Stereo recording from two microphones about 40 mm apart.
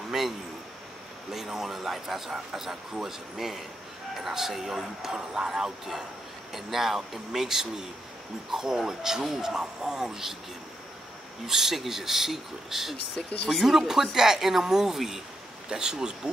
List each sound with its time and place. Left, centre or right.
0.1 s a sound: centre
1.3 s speech: centre
11.4 s speech: centre
13.5 s speech: centre
13.7 s speech: centre